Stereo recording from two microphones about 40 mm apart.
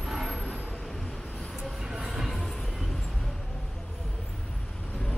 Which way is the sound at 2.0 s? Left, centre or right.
Centre.